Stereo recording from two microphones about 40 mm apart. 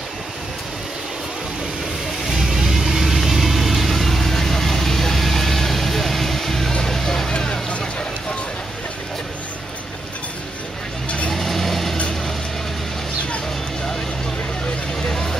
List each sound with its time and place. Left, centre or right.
2.3 s vehicle: centre
11.2 s vehicle: centre
15.0 s vehicle: centre